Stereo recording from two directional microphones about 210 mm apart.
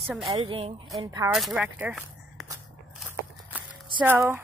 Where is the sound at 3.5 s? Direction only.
5° right (ahead or behind).